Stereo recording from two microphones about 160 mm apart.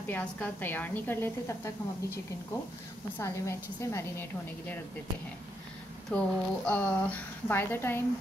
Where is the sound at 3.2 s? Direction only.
20° left (ahead or behind).